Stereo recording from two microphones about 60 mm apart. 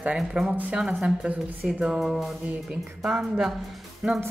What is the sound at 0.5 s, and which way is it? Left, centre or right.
Speech, right.